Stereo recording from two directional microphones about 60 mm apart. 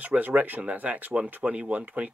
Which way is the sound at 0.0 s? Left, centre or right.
Right.